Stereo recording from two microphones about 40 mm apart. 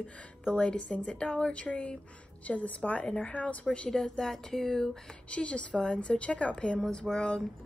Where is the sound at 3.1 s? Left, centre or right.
Left.